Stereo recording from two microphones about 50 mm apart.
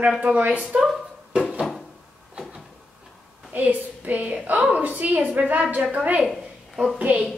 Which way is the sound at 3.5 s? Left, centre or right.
Right.